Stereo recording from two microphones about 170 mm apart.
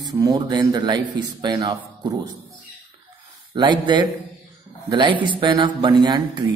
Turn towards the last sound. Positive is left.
turn(degrees=-25)  # may be behind; listen again after turning